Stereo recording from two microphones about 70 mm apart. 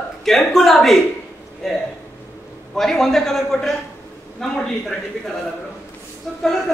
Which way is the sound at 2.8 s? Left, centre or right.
Centre.